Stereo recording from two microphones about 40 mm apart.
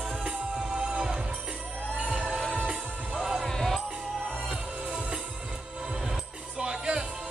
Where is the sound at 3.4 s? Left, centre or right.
Centre.